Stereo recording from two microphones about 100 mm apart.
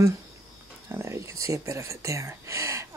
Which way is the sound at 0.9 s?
30° right (ahead or behind).